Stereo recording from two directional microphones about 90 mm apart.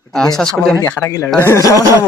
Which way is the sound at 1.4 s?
35° left (ahead or behind).